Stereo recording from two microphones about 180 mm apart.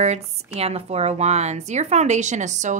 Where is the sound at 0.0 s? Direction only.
35° right (ahead or behind).